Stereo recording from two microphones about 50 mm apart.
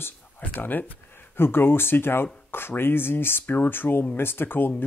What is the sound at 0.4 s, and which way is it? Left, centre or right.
Speech, left.